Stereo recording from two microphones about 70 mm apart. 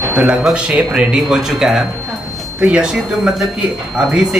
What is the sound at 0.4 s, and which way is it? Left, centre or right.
A man's voice, centre.